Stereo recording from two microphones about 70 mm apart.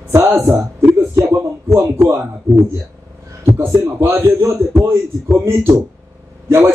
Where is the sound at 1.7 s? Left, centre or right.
Right.